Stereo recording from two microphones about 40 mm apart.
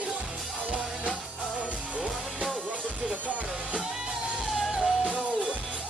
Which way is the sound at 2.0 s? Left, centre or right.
Right.